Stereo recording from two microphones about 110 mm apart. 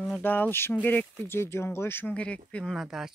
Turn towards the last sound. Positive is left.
turn(degrees=-5)  # may be behind; listen again after turning